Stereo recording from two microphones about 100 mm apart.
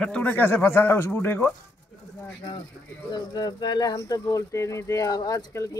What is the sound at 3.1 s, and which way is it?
Speech, 45° left (ahead or behind).